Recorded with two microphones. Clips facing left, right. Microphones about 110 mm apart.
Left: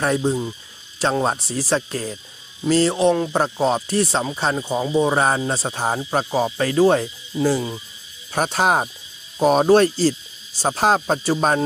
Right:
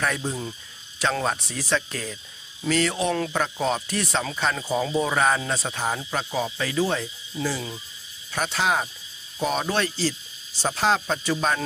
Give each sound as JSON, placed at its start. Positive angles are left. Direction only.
{"t": 0.0, "sound": "speech", "side_deg": 30}
{"t": 4.6, "sound": "speech", "side_deg": 20}